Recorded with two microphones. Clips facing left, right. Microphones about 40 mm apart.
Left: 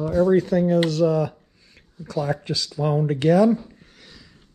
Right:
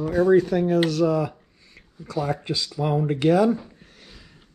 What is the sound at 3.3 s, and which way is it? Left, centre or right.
Speech, right.